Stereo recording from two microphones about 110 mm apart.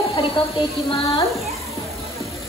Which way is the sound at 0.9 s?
65° left (ahead or behind).